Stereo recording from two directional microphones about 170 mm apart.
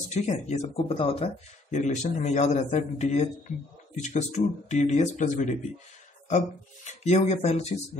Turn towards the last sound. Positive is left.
turn(degrees=40)  # may be behind; listen again after turning